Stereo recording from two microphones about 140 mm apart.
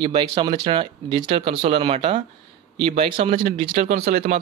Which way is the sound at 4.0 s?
90° right.